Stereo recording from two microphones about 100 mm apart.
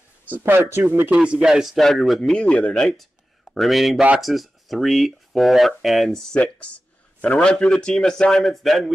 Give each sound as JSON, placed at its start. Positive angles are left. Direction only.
{"t": 0.3, "sound": "speech", "side_deg": -25}
{"t": 1.1, "sound": "speech", "side_deg": -10}
{"t": 2.4, "sound": "a man's voice", "side_deg": 10}